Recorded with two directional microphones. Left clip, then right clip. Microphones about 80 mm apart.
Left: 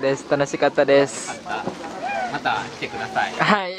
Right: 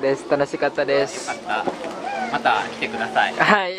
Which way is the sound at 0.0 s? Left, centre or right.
Left.